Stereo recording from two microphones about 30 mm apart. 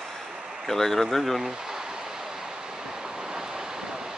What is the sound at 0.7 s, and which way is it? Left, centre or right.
Speech, centre.